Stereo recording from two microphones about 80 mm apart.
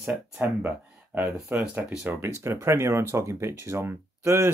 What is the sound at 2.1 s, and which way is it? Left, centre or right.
Speech, right.